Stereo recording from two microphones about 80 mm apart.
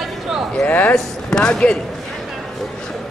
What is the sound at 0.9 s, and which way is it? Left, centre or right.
Speech, centre.